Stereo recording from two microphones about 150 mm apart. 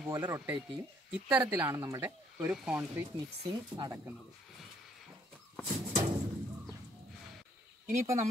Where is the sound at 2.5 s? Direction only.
10° right (ahead or behind).